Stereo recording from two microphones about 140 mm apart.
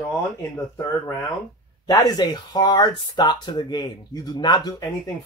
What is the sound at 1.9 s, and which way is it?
Speech, 30° left (ahead or behind).